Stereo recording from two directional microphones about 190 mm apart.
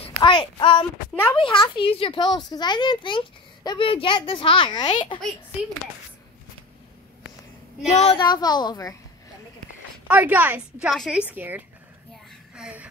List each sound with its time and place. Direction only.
0.2 s speech: 25° left (ahead or behind)
7.9 s speech: 30° left (ahead or behind)
10.0 s a woman's voice: 5° right (ahead or behind)
12.5 s a sound: 5° right (ahead or behind)